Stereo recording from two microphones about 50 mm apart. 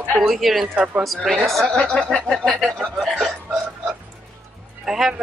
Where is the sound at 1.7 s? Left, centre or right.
Left; by 2.7 s centre.